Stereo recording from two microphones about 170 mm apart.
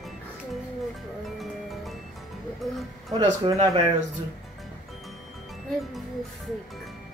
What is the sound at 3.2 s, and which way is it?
Speech, 20° right (ahead or behind).